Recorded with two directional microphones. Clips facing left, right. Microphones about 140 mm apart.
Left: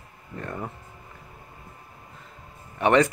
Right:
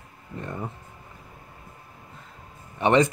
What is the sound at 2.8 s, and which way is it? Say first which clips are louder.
Speech: even; 25° right (ahead or behind).